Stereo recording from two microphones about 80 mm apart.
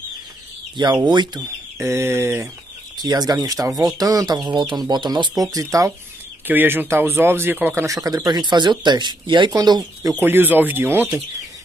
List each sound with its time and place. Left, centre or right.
1.0 s speech: right
1.8 s speech: right
3.0 s speech: right
6.4 s speech: right
7.8 s speech: right
9.5 s speech: right
10.2 s speech: right